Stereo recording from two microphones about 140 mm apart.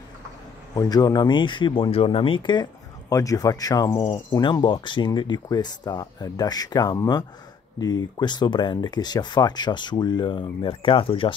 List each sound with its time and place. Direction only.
0.7 s speech: 25° left (ahead or behind)